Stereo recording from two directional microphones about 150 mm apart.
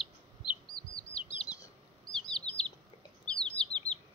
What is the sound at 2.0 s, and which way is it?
Bird, 5° left (ahead or behind).